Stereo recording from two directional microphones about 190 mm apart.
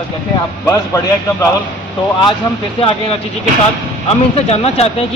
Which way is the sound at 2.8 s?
30° left (ahead or behind).